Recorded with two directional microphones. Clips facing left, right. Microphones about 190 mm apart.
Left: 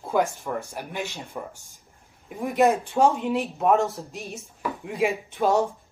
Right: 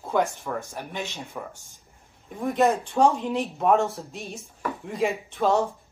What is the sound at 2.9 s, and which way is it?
Speech, 5° left (ahead or behind).